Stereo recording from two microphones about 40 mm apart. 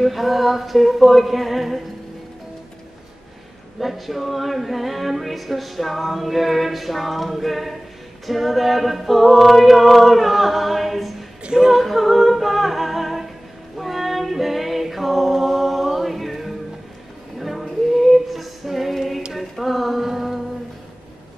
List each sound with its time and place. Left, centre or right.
0.0 s music: centre
3.8 s music: centre
11.4 s speech: centre
11.8 s humming: centre
13.7 s a capella: centre
17.4 s female singing: centre
19.3 s a sound: centre